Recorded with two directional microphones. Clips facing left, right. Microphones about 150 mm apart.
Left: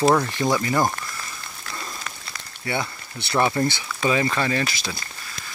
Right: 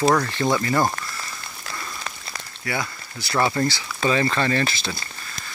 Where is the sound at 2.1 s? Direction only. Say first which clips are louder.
Right 2 dB; 30° right (ahead or behind).